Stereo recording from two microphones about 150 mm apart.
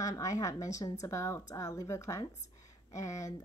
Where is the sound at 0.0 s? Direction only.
20° left (ahead or behind).